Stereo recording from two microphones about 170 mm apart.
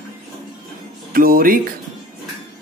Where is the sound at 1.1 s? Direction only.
60° right (ahead or behind).